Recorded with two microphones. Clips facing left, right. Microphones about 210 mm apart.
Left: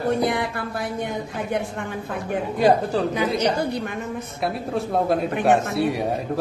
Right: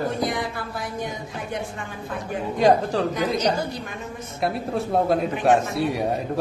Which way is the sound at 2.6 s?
5° left (ahead or behind).